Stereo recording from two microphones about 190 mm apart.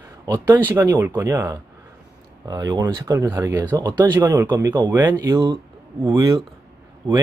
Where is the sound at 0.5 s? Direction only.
10° right (ahead or behind).